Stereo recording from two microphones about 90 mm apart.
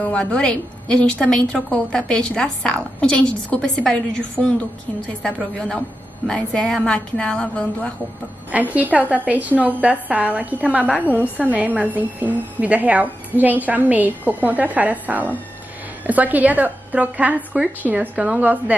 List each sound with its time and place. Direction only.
0.0 s a woman's voice: 10° left (ahead or behind)
8.5 s a woman's voice: 15° right (ahead or behind)